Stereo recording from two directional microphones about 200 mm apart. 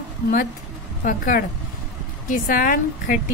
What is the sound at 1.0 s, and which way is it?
A woman's voice, 40° left (ahead or behind).